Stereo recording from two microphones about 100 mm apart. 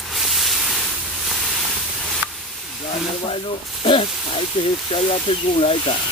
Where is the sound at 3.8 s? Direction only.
60° left (ahead or behind).